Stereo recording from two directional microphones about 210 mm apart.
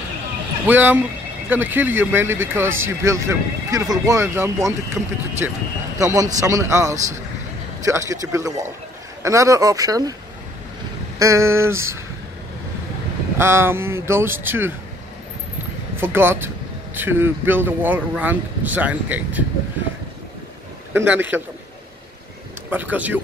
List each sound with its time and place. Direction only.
0.7 s speech: 10° right (ahead or behind)
5.0 s speech: centre (ahead or behind)
5.4 s speech: 10° right (ahead or behind)
11.1 s speech: 15° right (ahead or behind)
13.4 s speech: 10° right (ahead or behind)
16.0 s speech: 10° right (ahead or behind)
20.9 s speech: 10° right (ahead or behind)
22.7 s speech: 10° right (ahead or behind)